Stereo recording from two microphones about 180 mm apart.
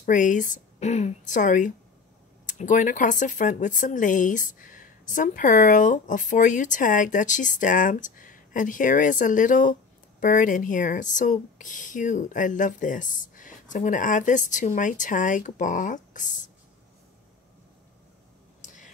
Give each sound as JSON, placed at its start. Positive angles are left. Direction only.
{"t": 0.0, "sound": "speech", "side_deg": 45}